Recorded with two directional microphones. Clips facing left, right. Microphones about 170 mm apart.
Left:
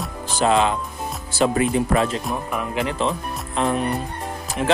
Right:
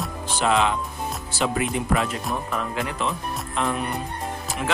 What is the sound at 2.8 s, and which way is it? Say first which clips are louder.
Speech: left 4 dB; 30° left (ahead or behind).